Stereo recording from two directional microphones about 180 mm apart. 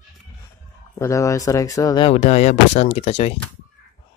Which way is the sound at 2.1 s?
40° left (ahead or behind).